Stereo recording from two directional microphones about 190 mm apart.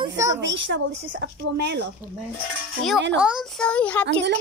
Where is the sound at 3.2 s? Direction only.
5° right (ahead or behind).